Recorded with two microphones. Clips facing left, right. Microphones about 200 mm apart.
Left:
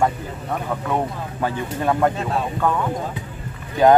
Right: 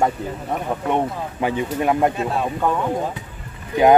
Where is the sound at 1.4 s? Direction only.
15° right (ahead or behind).